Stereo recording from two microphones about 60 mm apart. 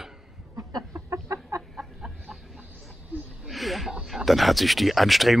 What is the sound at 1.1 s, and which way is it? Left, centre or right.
Chicken, right.